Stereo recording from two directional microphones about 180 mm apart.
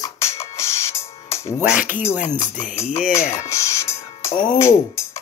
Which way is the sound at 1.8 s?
45° left (ahead or behind).